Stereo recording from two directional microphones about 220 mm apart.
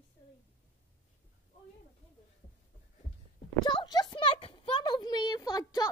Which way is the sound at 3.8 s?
20° left (ahead or behind).